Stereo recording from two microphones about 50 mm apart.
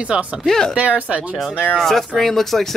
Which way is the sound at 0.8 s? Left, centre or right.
Right.